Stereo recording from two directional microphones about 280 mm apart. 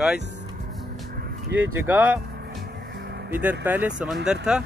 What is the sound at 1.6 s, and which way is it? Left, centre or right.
Speech, centre.